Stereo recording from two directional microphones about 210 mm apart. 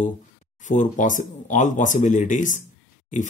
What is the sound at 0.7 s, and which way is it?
Speech, 35° left (ahead or behind).